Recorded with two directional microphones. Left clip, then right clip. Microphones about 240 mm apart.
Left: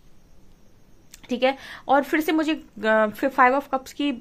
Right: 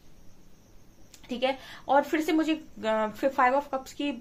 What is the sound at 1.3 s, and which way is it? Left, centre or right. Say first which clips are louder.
A woman's voice: left 6 dB; left.